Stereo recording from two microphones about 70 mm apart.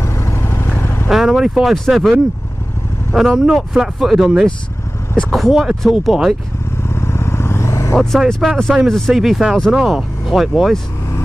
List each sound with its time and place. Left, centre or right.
0.0 s vehicle: left
1.0 s speech: centre
3.2 s speech: centre
7.0 s vehicle: left
7.9 s speech: centre